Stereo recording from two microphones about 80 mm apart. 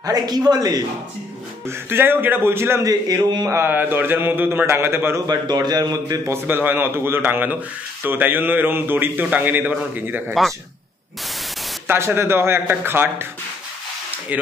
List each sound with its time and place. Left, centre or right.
0.0 s a man's voice: right
1.7 s a man's voice: right
2.8 s a man's voice: right
3.6 s a man's voice: right
5.2 s a man's voice: right
6.3 s a man's voice: right
11.9 s a man's voice: right
14.3 s a man's voice: centre